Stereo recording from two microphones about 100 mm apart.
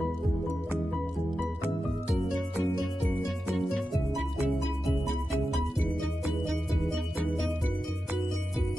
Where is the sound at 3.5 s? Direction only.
Centre (ahead or behind).